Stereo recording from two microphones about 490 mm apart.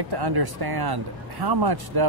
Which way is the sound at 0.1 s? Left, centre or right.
Right.